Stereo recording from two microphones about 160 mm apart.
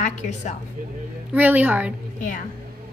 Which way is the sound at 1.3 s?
10° right (ahead or behind).